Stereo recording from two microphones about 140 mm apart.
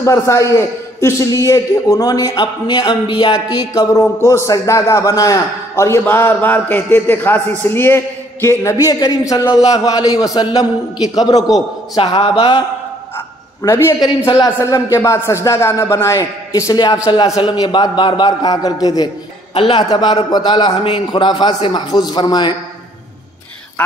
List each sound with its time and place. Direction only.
0.0 s a man's voice: 20° left (ahead or behind)
12.0 s a man's voice: 40° left (ahead or behind)
13.6 s a man's voice: 20° left (ahead or behind)